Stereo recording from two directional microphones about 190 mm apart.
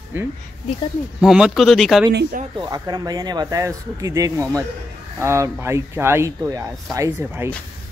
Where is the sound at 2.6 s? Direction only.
20° right (ahead or behind).